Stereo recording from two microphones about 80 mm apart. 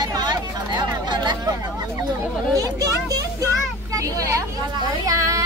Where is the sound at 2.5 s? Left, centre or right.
Right.